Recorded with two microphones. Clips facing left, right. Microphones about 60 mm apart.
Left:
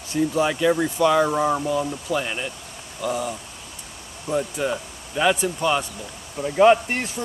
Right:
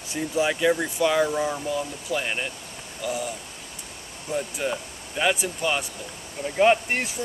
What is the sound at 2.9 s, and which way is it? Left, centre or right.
Speech, centre.